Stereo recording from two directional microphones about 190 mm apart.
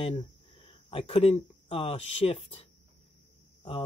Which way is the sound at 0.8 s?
30° left (ahead or behind).